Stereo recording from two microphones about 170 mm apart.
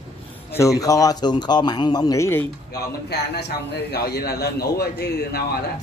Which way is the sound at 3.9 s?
70° left (ahead or behind).